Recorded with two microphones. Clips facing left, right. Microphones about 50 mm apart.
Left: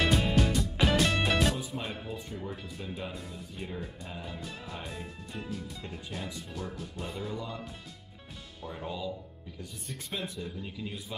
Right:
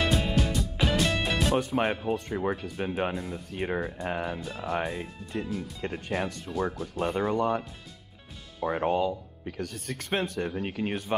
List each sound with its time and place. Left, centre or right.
0.0 s music: centre
1.6 s speech: right
3.5 s speech: right
8.6 s speech: right